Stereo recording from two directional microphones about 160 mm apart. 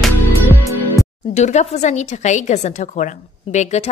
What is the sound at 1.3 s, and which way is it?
A woman's voice, 45° left (ahead or behind).